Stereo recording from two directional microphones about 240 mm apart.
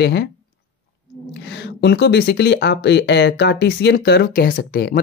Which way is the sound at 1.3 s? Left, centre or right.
Left.